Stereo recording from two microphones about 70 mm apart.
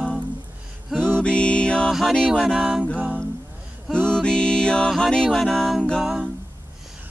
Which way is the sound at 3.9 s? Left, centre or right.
Centre.